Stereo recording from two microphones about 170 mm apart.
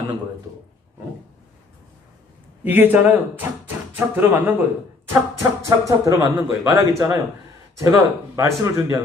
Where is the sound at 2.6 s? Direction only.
10° right (ahead or behind).